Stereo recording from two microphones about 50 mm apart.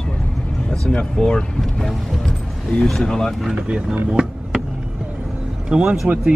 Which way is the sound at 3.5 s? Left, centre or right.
Centre.